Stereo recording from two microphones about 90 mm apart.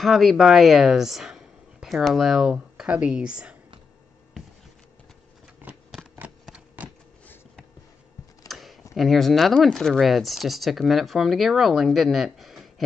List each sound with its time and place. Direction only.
0.0 s speech: centre (ahead or behind)
5.6 s scissors: 20° right (ahead or behind)
6.4 s typewriter: 10° right (ahead or behind)
8.5 s a sound: centre (ahead or behind)
8.9 s speech: centre (ahead or behind)